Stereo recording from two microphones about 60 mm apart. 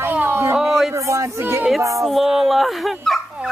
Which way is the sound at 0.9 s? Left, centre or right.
Right.